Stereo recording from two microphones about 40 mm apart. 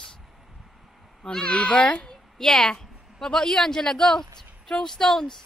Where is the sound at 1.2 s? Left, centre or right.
Centre.